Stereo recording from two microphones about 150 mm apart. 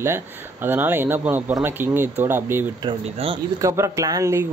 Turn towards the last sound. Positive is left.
turn(degrees=-20)  # may be behind; listen again after turning